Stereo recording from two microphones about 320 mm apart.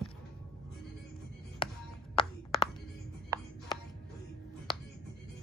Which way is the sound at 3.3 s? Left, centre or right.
Centre.